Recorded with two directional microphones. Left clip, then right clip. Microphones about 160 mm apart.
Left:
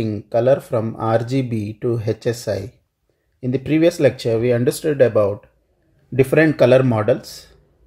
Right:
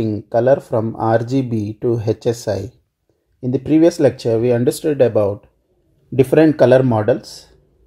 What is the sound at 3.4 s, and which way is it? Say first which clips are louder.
Speech: right 3 dB; 25° right (ahead or behind).